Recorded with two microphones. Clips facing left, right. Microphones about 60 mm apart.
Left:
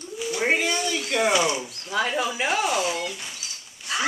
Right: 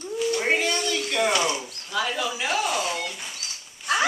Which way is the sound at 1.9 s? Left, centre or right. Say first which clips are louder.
Left 2 dB; left.